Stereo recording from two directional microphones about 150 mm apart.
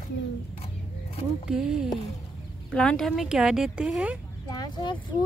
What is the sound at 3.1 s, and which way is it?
Speech, 5° right (ahead or behind).